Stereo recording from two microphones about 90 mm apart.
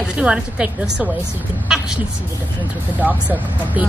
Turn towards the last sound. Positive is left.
turn(degrees=-20)  # may be behind; listen again after turning